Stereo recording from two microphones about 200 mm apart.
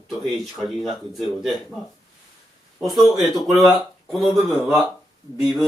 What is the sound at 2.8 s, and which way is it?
Speech, centre (ahead or behind).